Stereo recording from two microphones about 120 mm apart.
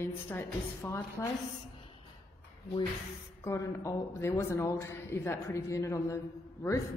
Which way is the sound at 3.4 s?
25° left (ahead or behind).